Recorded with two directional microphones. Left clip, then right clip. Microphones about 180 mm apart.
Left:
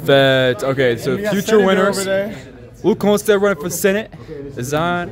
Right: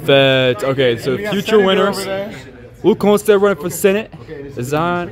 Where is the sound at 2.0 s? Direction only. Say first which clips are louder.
Left 3 dB; 40° left (ahead or behind).